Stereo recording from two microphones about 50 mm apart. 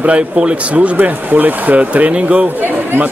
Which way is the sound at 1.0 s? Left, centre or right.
Right.